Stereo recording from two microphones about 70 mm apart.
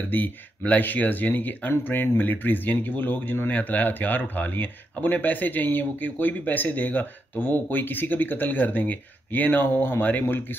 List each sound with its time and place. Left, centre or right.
0.0 s speech: left